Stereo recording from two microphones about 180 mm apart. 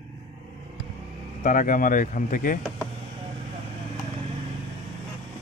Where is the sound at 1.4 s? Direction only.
50° left (ahead or behind).